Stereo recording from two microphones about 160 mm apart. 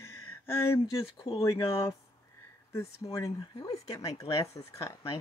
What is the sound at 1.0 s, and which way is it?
Speech, 35° left (ahead or behind).